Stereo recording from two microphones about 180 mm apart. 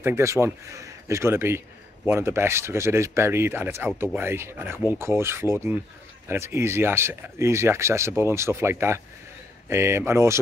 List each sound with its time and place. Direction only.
0.0 s speech: 15° right (ahead or behind)